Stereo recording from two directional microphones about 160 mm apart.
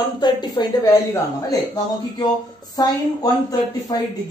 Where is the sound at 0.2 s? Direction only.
25° left (ahead or behind).